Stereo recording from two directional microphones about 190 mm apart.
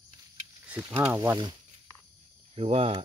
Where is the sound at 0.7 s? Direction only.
5° right (ahead or behind).